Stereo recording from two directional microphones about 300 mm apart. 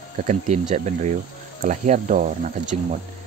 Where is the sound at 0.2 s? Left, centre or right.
Right.